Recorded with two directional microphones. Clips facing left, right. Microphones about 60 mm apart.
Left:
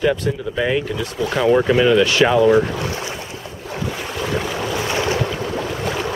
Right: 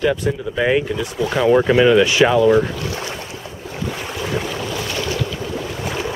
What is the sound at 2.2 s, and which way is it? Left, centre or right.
Speech, centre.